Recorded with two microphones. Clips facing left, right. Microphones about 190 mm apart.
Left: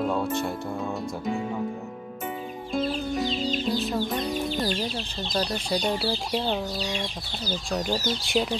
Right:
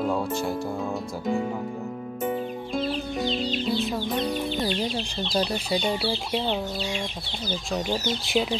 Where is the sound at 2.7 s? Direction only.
Centre (ahead or behind).